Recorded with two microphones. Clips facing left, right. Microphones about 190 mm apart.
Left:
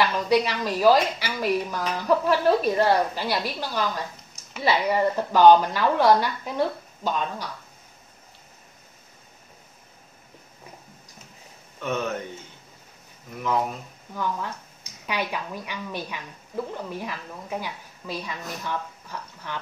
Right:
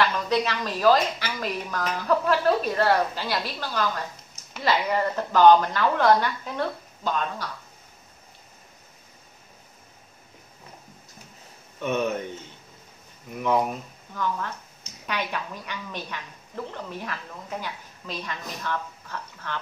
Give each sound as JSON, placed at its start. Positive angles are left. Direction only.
{"t": 0.0, "sound": "speech", "side_deg": 10}
{"t": 11.8, "sound": "speech", "side_deg": -15}
{"t": 13.4, "sound": "speech", "side_deg": -20}
{"t": 14.1, "sound": "speech", "side_deg": 10}